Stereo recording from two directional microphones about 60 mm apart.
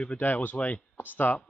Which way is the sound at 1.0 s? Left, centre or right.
Left.